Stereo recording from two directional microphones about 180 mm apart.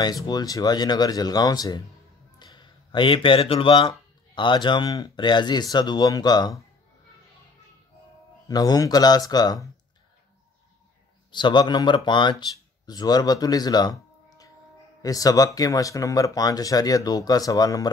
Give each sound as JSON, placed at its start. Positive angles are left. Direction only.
{"t": 0.0, "sound": "speech", "side_deg": 20}
{"t": 2.3, "sound": "a sound", "side_deg": 25}
{"t": 4.4, "sound": "speech", "side_deg": 25}
{"t": 8.5, "sound": "speech", "side_deg": 20}
{"t": 11.3, "sound": "speech", "side_deg": 25}